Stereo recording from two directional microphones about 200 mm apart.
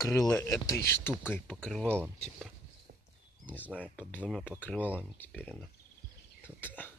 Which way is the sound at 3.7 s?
5° left (ahead or behind).